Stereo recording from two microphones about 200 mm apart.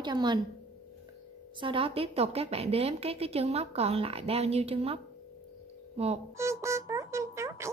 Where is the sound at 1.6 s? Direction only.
25° right (ahead or behind).